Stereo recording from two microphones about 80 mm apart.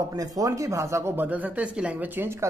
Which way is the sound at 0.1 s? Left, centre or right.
Right.